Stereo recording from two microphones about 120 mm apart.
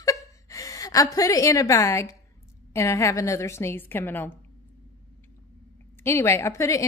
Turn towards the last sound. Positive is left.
turn(degrees=25)  # may be behind; listen again after turning